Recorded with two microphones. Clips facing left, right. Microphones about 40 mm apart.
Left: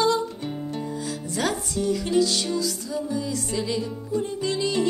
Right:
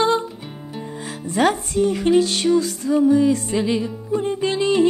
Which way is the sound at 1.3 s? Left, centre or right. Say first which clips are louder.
Right 9 dB; right.